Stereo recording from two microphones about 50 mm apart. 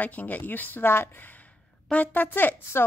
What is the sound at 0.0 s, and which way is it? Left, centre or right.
A woman's voice, left.